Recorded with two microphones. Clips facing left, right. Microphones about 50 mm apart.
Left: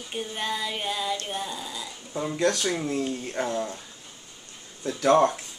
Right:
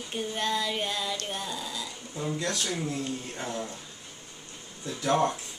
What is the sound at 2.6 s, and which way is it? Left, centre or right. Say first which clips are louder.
Speech: left 4 dB; left.